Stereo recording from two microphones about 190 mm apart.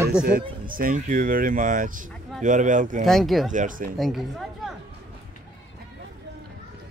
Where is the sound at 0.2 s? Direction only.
45° right (ahead or behind).